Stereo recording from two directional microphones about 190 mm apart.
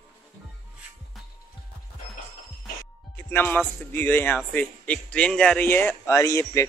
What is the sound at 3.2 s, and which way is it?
Speech, 10° left (ahead or behind).